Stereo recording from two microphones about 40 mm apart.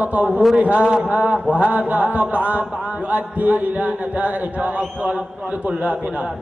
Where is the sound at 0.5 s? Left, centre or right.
Right.